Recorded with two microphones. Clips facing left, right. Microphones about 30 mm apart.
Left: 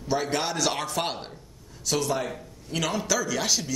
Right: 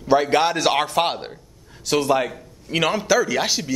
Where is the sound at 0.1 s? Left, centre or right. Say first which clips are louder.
Right 9 dB; right.